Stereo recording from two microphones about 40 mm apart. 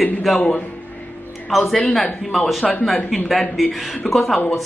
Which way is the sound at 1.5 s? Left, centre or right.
Centre.